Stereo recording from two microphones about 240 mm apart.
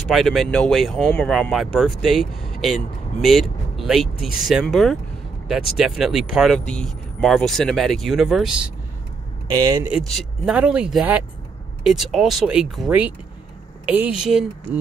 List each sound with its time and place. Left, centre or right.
0.1 s speech: centre
9.5 s speech: centre
9.9 s speech: centre